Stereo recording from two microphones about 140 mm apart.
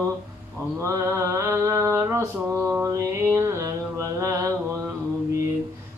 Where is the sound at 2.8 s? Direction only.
20° right (ahead or behind).